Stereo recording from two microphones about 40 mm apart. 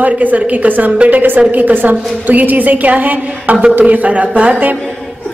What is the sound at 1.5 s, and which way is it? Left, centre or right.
A woman's voice, right.